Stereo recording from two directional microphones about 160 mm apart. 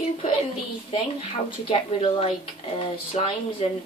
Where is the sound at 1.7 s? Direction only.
35° left (ahead or behind).